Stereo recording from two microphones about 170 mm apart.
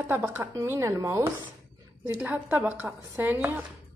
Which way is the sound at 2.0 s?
10° right (ahead or behind).